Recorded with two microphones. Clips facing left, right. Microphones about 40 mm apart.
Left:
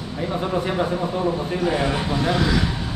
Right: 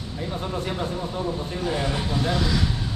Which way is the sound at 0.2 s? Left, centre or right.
Left.